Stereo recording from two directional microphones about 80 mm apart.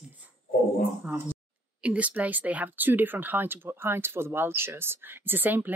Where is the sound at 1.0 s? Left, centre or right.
Right.